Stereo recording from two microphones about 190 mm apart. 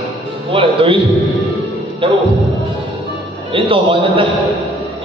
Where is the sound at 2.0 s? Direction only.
25° right (ahead or behind).